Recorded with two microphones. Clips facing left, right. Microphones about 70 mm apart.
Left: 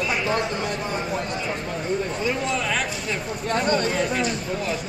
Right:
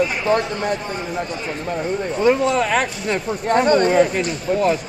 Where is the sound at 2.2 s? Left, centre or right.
Right.